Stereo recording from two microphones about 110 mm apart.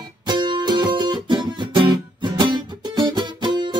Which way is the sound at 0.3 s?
45° right (ahead or behind).